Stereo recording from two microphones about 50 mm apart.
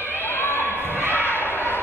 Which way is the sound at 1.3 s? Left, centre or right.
Left.